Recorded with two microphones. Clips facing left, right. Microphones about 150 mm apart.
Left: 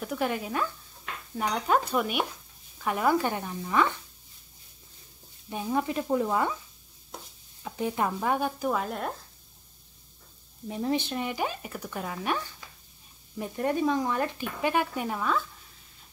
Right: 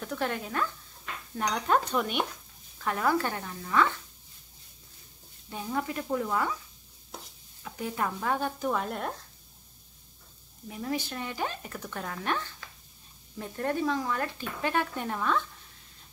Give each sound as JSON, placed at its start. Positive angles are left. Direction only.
{"t": 0.0, "sound": "speech", "side_deg": 10}
{"t": 1.3, "sound": "dishes", "side_deg": 5}
{"t": 2.8, "sound": "speech", "side_deg": 15}
{"t": 5.5, "sound": "speech", "side_deg": 20}
{"t": 7.6, "sound": "speech", "side_deg": 20}
{"t": 10.7, "sound": "speech", "side_deg": 25}